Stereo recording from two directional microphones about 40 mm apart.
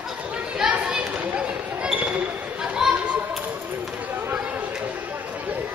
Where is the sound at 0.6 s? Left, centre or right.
Centre.